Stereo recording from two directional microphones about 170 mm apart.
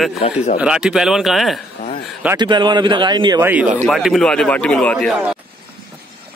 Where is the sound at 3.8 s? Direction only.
Centre (ahead or behind).